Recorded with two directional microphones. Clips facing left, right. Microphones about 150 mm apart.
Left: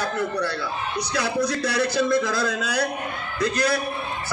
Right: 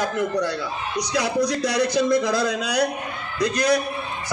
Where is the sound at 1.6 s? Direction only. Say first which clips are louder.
Right 2 dB; 20° right (ahead or behind).